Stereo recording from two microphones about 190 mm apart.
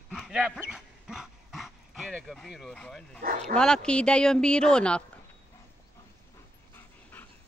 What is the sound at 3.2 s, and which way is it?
Bow-wow, 45° right (ahead or behind).